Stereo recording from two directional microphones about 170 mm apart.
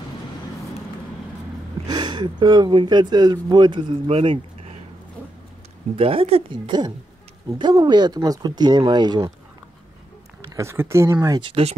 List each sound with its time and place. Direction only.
1.9 s speech: 25° right (ahead or behind)
5.9 s speech: 35° right (ahead or behind)
10.5 s speech: 15° right (ahead or behind); by 11.7 s 30° right (ahead or behind)